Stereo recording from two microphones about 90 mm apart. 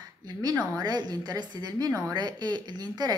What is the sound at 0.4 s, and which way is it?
Speech, 45° right (ahead or behind).